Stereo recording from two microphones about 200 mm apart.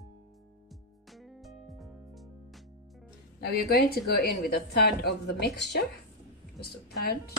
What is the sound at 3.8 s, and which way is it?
A woman's voice, 55° left (ahead or behind).